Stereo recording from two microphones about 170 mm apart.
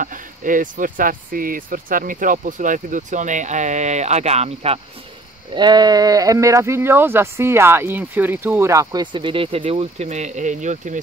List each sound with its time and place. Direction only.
0.0 s speech: 50° right (ahead or behind)
5.5 s speech: 25° right (ahead or behind); by 11.0 s 45° right (ahead or behind)